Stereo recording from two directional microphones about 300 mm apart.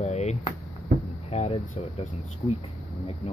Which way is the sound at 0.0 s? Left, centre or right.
Left.